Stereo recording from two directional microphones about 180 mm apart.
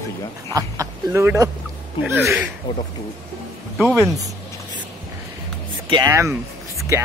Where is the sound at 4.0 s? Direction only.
20° right (ahead or behind).